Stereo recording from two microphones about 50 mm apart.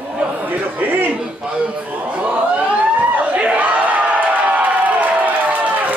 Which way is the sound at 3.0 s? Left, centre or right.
Right.